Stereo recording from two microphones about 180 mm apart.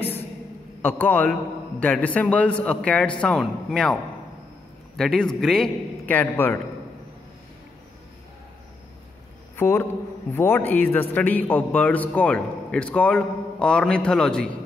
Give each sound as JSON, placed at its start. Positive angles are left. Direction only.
{"t": 0.8, "sound": "a man's voice", "side_deg": 10}
{"t": 9.6, "sound": "a man's voice", "side_deg": 10}